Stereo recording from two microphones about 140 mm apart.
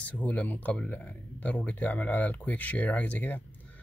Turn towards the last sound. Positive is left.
turn(degrees=10)  # may be behind; listen again after turning